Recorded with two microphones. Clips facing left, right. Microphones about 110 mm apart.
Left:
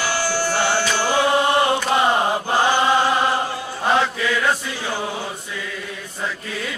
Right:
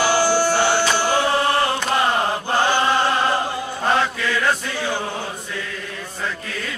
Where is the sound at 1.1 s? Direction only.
15° left (ahead or behind).